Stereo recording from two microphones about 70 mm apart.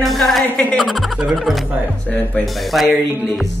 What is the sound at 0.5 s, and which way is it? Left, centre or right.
Music, centre.